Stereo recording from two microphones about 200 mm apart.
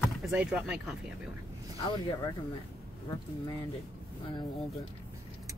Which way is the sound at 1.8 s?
20° left (ahead or behind).